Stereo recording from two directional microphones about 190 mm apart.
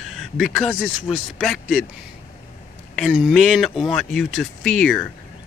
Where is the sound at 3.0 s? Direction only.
Centre (ahead or behind).